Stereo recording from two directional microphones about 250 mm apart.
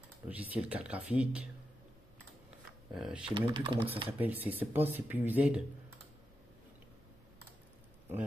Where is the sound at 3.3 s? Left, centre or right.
Centre.